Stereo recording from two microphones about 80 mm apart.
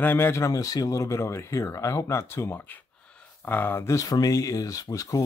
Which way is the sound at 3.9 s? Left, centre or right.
Left.